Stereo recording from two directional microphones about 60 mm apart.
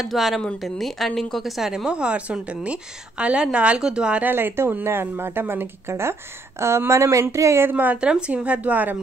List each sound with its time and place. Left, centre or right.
0.0 s speech: centre
4.2 s speech: right
7.7 s speech: right
8.0 s speech: centre